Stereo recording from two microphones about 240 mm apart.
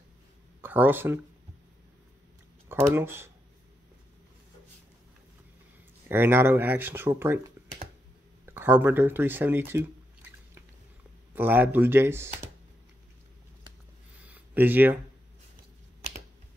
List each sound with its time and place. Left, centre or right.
0.6 s speech: centre
2.7 s speech: centre
6.0 s speech: centre
8.5 s speech: centre
11.3 s speech: centre
14.2 s a sound: centre